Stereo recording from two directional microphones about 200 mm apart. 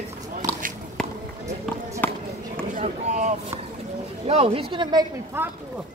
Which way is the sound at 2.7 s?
35° right (ahead or behind).